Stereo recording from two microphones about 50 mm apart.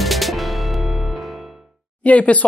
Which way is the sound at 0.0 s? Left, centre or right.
Centre.